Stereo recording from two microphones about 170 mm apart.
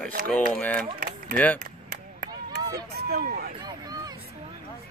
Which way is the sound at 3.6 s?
20° right (ahead or behind).